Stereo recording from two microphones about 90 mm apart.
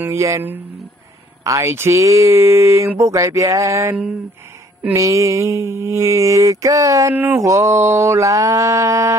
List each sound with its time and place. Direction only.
0.0 s mantra: 35° right (ahead or behind)
4.9 s mantra: 35° right (ahead or behind)
7.1 s a sound: 20° right (ahead or behind)
7.4 s mantra: 35° right (ahead or behind)